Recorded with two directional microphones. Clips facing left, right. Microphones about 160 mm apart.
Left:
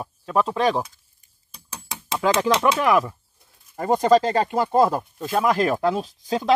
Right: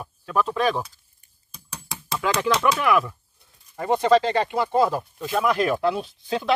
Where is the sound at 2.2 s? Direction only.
35° left (ahead or behind).